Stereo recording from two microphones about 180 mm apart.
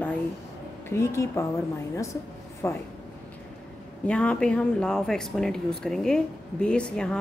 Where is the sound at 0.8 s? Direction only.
15° left (ahead or behind).